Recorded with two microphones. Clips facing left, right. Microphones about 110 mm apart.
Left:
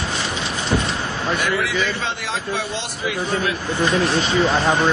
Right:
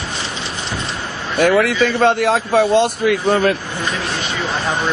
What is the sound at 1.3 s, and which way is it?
A man's voice, 50° right (ahead or behind).